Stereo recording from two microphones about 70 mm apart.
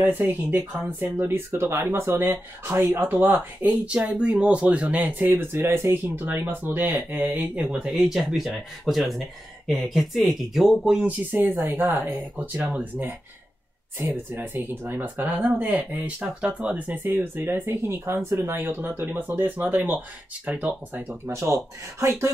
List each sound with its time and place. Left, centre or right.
0.0 s speech: right
3.8 s speech: centre
7.8 s speech: centre
11.0 s speech: right
13.9 s speech: right
21.3 s speech: right